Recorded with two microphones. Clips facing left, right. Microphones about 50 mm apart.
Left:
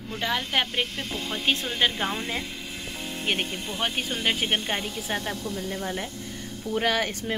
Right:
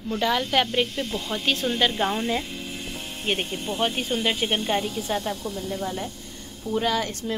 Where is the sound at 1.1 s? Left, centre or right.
Left.